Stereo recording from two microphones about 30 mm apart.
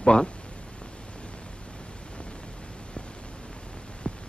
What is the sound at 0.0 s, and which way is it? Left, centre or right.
Speech, left.